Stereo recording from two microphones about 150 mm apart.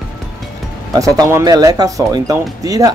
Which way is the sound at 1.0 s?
20° right (ahead or behind).